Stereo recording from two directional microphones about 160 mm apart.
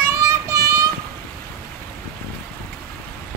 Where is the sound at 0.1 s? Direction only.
20° right (ahead or behind).